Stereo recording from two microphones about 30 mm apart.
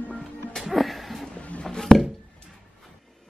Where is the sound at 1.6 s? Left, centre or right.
Centre.